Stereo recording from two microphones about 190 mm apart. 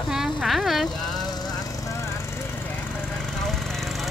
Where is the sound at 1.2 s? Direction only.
20° left (ahead or behind).